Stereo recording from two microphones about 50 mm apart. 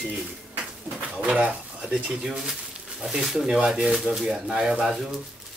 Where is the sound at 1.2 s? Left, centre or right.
Right.